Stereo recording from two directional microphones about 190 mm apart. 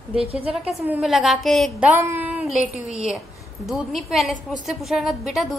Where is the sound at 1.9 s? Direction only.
10° right (ahead or behind).